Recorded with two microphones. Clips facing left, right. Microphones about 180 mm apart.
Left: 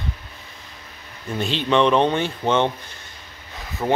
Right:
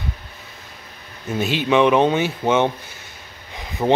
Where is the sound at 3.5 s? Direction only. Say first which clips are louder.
Right 4 dB; 15° right (ahead or behind).